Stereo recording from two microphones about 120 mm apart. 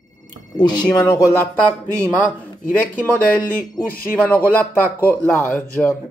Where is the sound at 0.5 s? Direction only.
35° left (ahead or behind).